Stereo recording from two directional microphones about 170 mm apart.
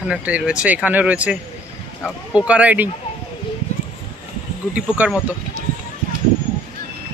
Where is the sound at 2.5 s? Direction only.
10° right (ahead or behind).